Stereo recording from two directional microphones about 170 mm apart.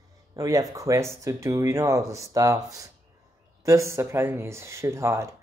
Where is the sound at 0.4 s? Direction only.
20° right (ahead or behind).